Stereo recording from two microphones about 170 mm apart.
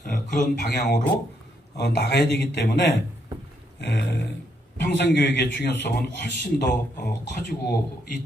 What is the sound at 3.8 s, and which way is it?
A man's voice, 85° left.